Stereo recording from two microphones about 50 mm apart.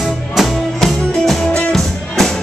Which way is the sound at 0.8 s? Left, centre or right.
Centre.